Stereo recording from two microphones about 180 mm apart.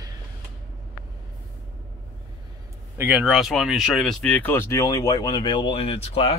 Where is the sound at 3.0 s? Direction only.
10° right (ahead or behind); by 6.3 s 35° left (ahead or behind).